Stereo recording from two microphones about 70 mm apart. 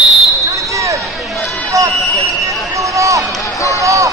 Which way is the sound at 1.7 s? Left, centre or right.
Right.